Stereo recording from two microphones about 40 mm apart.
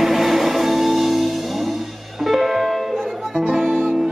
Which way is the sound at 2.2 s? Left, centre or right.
Centre.